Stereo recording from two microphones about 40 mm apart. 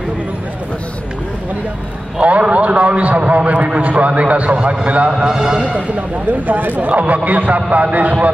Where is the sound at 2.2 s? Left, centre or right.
Right.